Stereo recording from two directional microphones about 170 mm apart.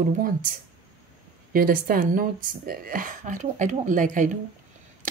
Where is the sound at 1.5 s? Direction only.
60° right (ahead or behind).